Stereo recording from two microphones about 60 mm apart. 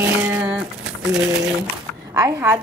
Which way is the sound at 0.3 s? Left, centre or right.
Right.